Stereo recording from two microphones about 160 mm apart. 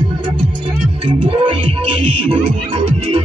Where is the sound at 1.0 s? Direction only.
35° right (ahead or behind).